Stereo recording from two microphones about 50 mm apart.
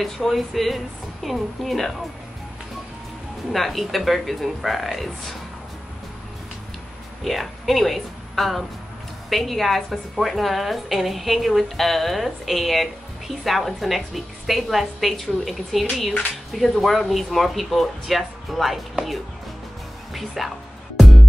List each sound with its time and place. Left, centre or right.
0.0 s a woman's voice: centre
3.5 s a woman's voice: centre
7.2 s a woman's voice: centre
20.1 s music: centre